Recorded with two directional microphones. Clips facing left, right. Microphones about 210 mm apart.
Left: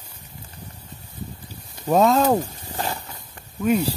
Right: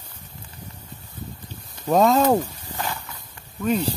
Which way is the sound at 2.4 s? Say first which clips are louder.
Left 1 dB; 35° left (ahead or behind).